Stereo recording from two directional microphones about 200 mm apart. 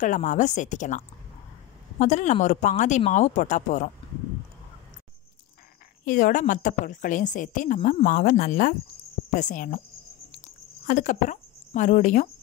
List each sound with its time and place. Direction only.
0.0 s a woman's voice: 40° left (ahead or behind)
6.0 s a woman's voice: 40° left (ahead or behind)
10.9 s speech: 40° left (ahead or behind)